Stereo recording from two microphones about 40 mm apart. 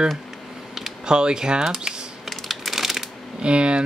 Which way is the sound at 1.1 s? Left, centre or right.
Right.